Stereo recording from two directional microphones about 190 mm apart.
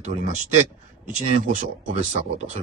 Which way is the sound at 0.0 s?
40° right (ahead or behind).